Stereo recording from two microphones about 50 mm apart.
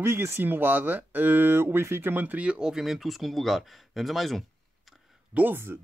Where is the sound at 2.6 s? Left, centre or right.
Centre.